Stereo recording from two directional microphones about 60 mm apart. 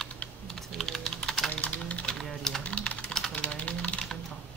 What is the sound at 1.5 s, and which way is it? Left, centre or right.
Typing, left.